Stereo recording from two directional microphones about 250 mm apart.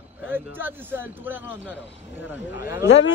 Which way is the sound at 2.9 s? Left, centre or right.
Left.